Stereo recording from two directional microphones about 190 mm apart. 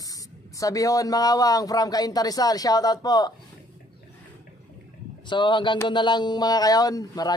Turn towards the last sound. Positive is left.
turn(degrees=20)  # may be behind; listen again after turning